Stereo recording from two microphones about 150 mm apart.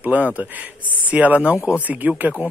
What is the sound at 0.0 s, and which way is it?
A man's voice, 10° right (ahead or behind).